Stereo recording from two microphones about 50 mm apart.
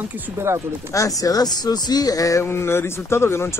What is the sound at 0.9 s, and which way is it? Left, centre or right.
Speech, left.